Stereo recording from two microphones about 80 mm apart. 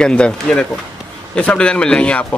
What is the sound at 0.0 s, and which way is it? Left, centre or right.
Speech, centre.